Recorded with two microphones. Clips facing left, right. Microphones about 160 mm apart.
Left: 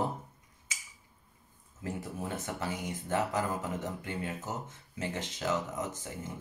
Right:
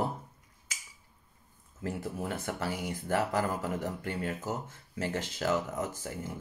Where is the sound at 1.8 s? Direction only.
20° left (ahead or behind).